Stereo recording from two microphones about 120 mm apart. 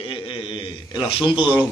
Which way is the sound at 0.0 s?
45° left (ahead or behind).